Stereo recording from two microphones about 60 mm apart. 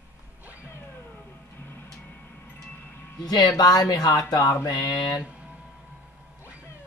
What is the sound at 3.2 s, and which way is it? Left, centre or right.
Speech, left.